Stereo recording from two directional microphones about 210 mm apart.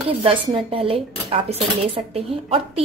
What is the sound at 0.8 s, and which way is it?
A woman's voice, 25° right (ahead or behind).